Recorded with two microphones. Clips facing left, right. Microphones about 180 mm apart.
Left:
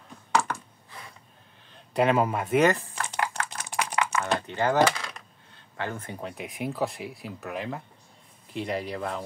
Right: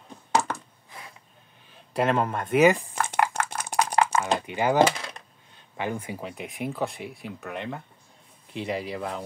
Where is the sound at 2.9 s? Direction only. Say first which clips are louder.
Right 5 dB; 50° right (ahead or behind).